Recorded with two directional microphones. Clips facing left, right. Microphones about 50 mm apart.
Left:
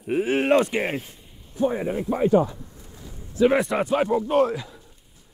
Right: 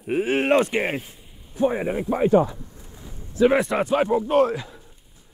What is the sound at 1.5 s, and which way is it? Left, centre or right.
Speech, right.